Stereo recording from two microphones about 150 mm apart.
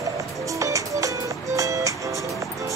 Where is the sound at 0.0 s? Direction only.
20° right (ahead or behind).